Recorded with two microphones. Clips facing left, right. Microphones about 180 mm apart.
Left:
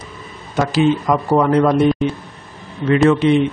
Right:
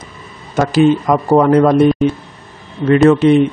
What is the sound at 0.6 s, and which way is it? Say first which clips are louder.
A man's voice: right 4 dB; 50° right (ahead or behind).